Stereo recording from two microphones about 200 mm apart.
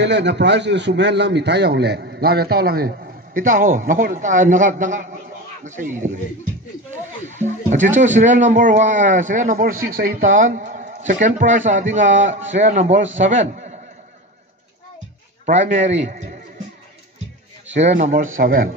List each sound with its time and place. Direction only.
0.0 s a man's voice: 60° right (ahead or behind); by 6.1 s 40° right (ahead or behind)
7.2 s speech: 35° right (ahead or behind)
12.3 s a man's voice: 70° right (ahead or behind)
12.5 s a man's voice: 35° right (ahead or behind)
15.4 s speech: 35° right (ahead or behind)
17.7 s a man's voice: 35° right (ahead or behind)